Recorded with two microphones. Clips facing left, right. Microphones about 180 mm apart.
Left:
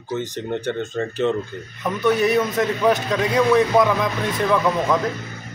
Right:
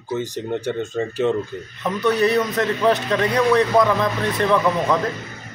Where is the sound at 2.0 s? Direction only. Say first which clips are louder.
Even; 15° left (ahead or behind).